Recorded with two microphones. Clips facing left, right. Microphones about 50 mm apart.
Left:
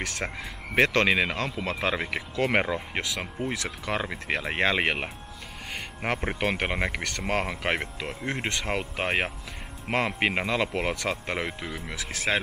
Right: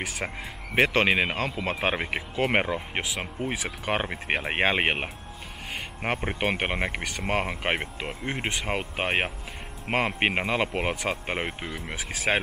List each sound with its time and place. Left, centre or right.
0.0 s speech: centre
5.7 s speech: centre; by 12.4 s right